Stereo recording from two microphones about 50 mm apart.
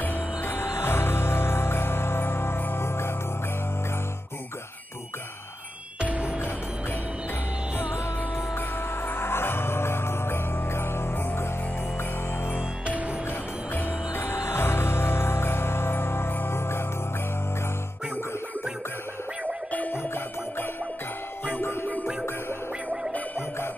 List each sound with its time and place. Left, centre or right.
0.0 s music: left
5.9 s music: right
8.5 s music: left
13.7 s music: left
19.9 s music: left